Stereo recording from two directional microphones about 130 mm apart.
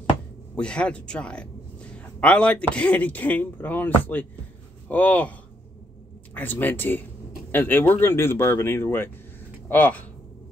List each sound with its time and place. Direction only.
0.6 s a man's voice: 5° left (ahead or behind)
6.3 s a man's voice: 15° left (ahead or behind)